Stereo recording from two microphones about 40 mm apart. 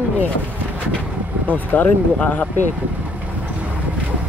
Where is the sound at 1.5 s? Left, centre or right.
Left.